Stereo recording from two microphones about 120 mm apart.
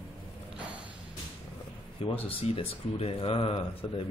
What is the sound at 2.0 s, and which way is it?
Speech, 50° left (ahead or behind).